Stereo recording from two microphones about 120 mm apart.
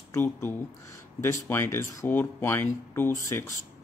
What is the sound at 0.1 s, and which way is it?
Speech, 15° left (ahead or behind).